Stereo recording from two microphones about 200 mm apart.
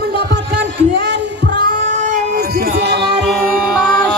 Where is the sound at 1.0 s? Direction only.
60° right (ahead or behind).